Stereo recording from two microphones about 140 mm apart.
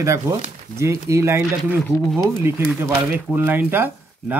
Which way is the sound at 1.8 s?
Centre (ahead or behind).